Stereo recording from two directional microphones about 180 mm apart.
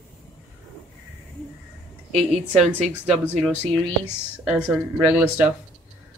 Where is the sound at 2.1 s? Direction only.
Centre (ahead or behind).